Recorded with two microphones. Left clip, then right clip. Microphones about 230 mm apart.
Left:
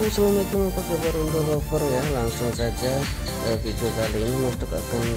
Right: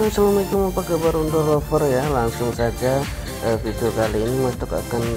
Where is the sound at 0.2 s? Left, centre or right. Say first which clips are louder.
Right 3 dB; centre.